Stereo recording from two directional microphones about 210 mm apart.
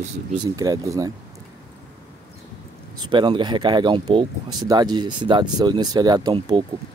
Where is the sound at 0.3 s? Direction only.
20° right (ahead or behind).